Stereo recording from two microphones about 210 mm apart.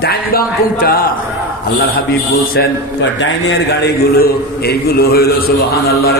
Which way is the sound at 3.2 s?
55° left (ahead or behind).